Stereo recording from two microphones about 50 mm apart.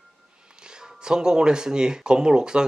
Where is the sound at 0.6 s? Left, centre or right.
Centre.